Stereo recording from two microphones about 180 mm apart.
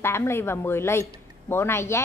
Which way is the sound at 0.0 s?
15° left (ahead or behind).